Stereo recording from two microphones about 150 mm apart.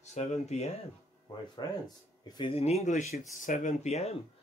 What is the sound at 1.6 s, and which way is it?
Speech, 30° left (ahead or behind).